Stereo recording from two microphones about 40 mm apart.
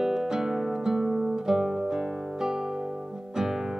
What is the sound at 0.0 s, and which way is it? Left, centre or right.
Music, centre.